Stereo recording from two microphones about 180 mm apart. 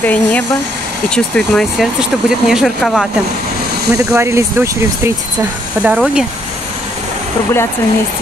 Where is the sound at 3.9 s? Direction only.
15° right (ahead or behind).